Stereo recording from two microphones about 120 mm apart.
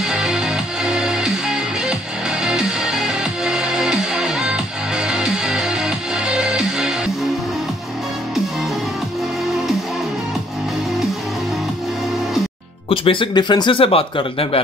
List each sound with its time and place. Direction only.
0.0 s music: 5° right (ahead or behind)
12.9 s speech: 45° left (ahead or behind)